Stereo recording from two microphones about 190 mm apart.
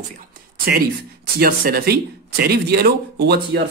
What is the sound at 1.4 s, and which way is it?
A man's voice, 50° right (ahead or behind).